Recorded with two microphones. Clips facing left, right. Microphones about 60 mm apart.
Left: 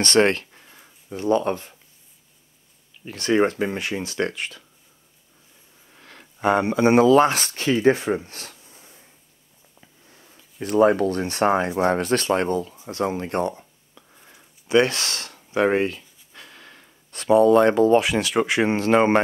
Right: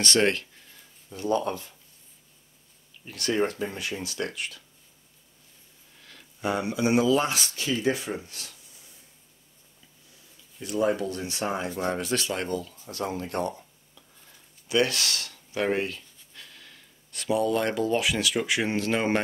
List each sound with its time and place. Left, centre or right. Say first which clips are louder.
0.0 s speech: left 5 dB; left
0.7 s a sound: left 8 dB; left
1.3 s speech: left 5 dB; left
3.5 s speech: left 7 dB; left
5.9 s speech: left 7 dB; left
13.6 s a sound: left 3 dB; left
14.7 s speech: left 6 dB; left